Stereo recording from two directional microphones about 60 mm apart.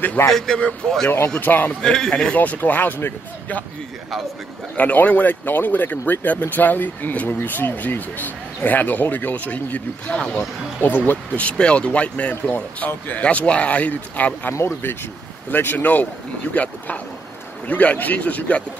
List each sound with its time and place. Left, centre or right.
0.2 s a man's voice: left
1.4 s a man's voice: left
1.8 s a man's voice: centre
2.3 s speech: left
4.7 s speech: left
14.5 s speech: left
15.5 s speech: left